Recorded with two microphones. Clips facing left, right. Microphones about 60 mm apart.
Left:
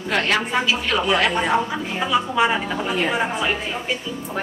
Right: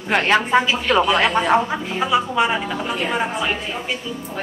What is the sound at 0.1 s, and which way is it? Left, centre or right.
Speech, right.